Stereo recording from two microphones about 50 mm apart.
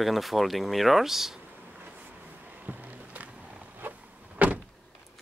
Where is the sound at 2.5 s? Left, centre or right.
Right.